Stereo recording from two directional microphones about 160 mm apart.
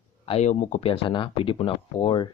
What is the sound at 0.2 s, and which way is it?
Speech, 40° left (ahead or behind).